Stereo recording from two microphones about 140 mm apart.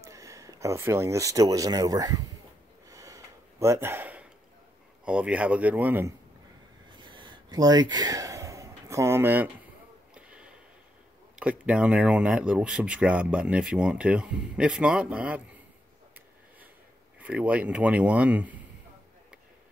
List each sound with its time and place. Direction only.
0.0 s speech: 20° right (ahead or behind)
2.9 s gasp: 25° right (ahead or behind)
5.0 s speech: 10° right (ahead or behind)
6.9 s a sound: 35° right (ahead or behind); by 10.5 s 5° right (ahead or behind)
11.3 s speech: 10° right (ahead or behind)
17.2 s speech: 10° right (ahead or behind)